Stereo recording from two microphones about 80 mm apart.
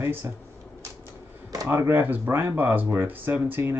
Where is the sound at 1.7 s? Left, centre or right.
Right.